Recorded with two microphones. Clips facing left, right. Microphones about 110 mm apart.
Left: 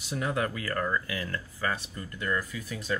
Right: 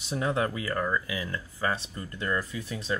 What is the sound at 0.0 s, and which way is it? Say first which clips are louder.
Speech: right 2 dB; 25° right (ahead or behind).